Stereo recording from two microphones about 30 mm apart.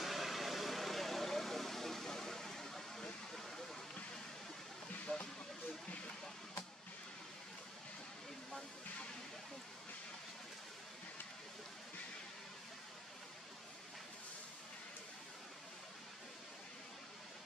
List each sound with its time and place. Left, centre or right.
0.0 s vehicle: centre
2.0 s a sound: centre
5.0 s hiss: left